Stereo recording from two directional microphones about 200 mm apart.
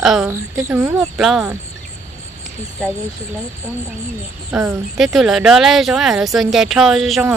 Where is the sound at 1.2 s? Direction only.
Centre (ahead or behind).